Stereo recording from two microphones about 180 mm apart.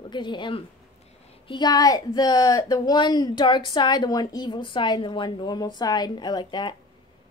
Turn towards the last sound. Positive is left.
turn(degrees=25)  # may be behind; listen again after turning